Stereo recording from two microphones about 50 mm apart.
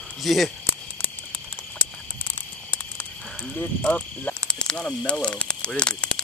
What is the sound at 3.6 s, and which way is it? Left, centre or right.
Speech, left.